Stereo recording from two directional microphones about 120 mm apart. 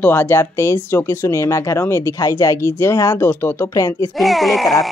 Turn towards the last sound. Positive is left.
turn(degrees=0)  # may be behind; listen again after turning